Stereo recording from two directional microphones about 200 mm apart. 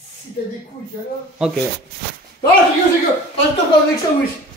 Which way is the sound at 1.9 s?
50° right (ahead or behind).